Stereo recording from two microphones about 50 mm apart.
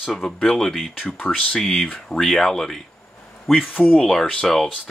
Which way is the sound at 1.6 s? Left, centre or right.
Centre.